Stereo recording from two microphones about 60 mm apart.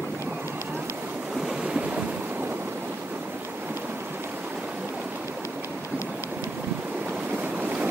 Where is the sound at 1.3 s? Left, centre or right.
Centre.